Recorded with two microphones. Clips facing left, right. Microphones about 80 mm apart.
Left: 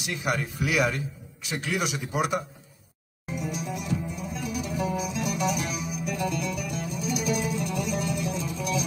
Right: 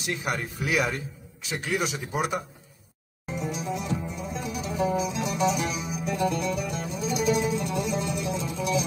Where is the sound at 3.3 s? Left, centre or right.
Right.